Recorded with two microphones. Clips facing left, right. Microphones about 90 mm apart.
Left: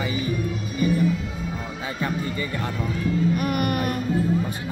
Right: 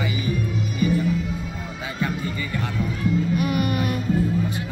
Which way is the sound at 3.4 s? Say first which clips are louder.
Right 1 dB; 50° left (ahead or behind).